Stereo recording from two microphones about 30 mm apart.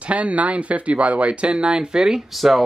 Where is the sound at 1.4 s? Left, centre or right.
Right.